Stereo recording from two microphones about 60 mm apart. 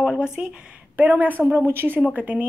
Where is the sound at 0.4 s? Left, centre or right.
Right.